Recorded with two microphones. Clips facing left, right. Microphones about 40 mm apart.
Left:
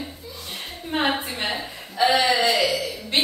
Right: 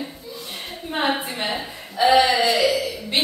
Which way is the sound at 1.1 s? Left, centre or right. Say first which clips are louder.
Right 1 dB; centre.